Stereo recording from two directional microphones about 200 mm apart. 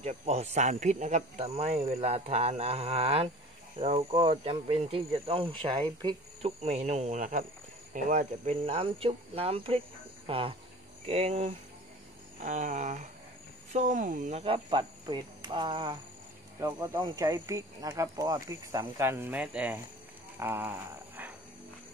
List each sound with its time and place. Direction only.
0.0 s speech: 30° right (ahead or behind)
12.4 s speech: 40° right (ahead or behind); by 19.8 s 5° right (ahead or behind)
20.3 s a sound: 10° right (ahead or behind)